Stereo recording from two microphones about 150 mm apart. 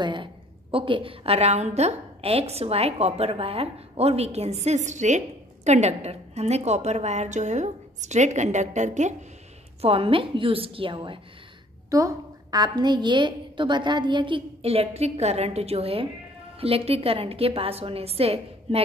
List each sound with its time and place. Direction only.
0.0 s a woman's voice: 35° right (ahead or behind); by 9.1 s 50° right (ahead or behind)
9.8 s a woman's voice: 40° right (ahead or behind)
11.9 s a woman's voice: 25° right (ahead or behind); by 18.9 s 40° right (ahead or behind)